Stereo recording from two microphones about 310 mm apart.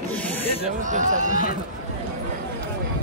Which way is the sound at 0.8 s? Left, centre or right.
Right.